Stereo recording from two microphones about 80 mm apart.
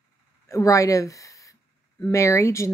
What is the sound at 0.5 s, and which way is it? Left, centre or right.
A woman's voice, left.